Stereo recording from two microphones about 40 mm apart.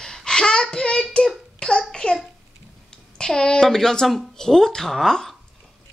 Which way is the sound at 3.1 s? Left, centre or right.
Centre.